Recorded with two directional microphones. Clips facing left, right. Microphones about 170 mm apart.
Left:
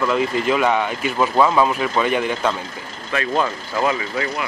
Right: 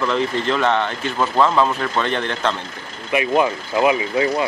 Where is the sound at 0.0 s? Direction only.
5° left (ahead or behind).